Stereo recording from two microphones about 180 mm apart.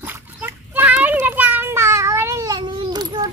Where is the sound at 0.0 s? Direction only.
10° right (ahead or behind).